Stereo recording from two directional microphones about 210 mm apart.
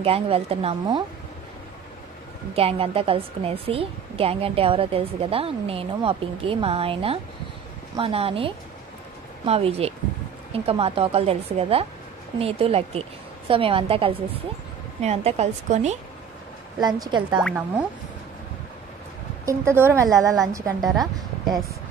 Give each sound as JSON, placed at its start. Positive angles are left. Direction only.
{"t": 0.0, "sound": "a woman's voice", "side_deg": -25}
{"t": 2.5, "sound": "a woman's voice", "side_deg": -25}
{"t": 16.8, "sound": "a woman's voice", "side_deg": -20}
{"t": 17.4, "sound": "speech", "side_deg": -5}
{"t": 19.4, "sound": "a woman's voice", "side_deg": -10}
{"t": 20.8, "sound": "speech", "side_deg": 0}